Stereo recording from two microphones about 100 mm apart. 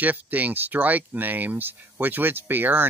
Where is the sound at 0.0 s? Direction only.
15° right (ahead or behind).